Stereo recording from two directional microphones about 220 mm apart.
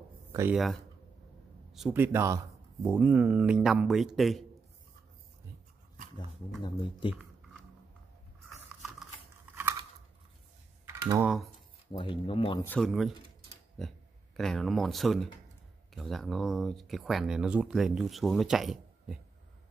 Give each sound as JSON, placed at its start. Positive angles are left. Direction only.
{"t": 0.3, "sound": "a sound", "side_deg": -10}
{"t": 1.7, "sound": "speech", "side_deg": -5}
{"t": 6.6, "sound": "speech", "side_deg": 20}
{"t": 10.9, "sound": "speech", "side_deg": -10}
{"t": 11.9, "sound": "speech", "side_deg": 25}
{"t": 12.6, "sound": "speech", "side_deg": 5}